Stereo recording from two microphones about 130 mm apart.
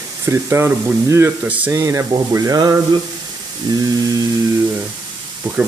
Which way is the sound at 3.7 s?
30° right (ahead or behind).